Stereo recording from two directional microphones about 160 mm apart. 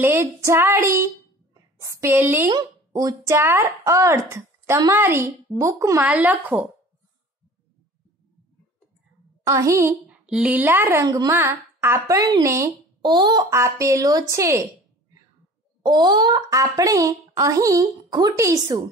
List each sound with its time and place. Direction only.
0.0 s a woman's voice: 15° right (ahead or behind)
9.5 s speech: 20° right (ahead or behind)
10.0 s a woman's voice: 5° right (ahead or behind)
15.8 s speech: 25° right (ahead or behind)